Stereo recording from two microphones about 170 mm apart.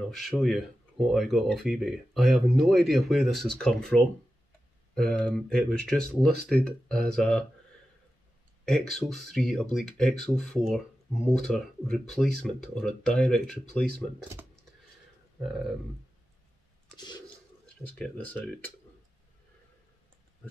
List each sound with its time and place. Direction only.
0.1 s speech: centre (ahead or behind)
8.6 s speech: centre (ahead or behind)
16.9 s toilet flush: 25° left (ahead or behind)
17.8 s speech: 5° left (ahead or behind)